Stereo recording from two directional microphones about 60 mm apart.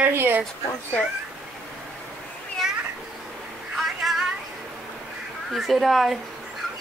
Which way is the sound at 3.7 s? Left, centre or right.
Centre.